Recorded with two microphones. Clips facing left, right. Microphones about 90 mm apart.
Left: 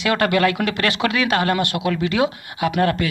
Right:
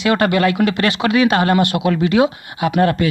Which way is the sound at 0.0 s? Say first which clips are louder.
Right 3 dB; 10° right (ahead or behind).